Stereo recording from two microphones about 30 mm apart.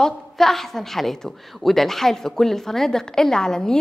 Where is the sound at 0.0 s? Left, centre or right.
Centre.